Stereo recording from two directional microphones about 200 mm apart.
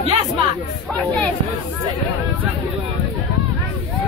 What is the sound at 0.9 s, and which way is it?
Speech, 5° left (ahead or behind).